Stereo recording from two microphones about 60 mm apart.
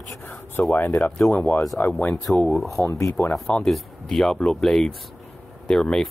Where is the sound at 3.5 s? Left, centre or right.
Centre.